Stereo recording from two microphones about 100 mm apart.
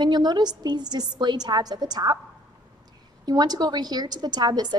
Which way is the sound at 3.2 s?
40° right (ahead or behind).